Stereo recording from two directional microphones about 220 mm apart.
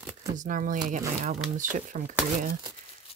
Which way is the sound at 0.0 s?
15° right (ahead or behind).